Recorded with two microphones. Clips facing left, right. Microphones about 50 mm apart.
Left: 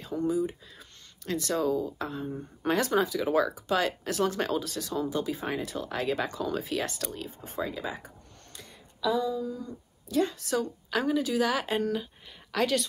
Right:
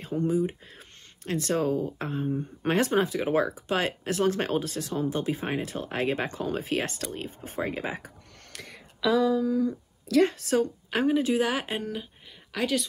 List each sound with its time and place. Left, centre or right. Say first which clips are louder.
0.0 s speech: right 2 dB; right
8.5 s a sound: right 4 dB; right
10.2 s speech: right 5 dB; right
11.8 s speech: left 4 dB; centre